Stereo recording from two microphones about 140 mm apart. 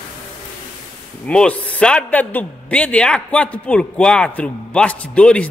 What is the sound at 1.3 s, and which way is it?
A man's voice, 10° left (ahead or behind).